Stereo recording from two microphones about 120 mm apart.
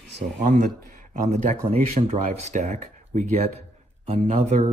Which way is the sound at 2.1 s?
65° right (ahead or behind).